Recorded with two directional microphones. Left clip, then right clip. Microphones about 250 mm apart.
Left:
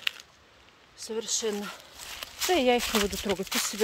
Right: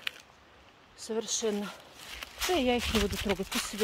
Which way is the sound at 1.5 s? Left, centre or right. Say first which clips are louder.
Left 1 dB; centre.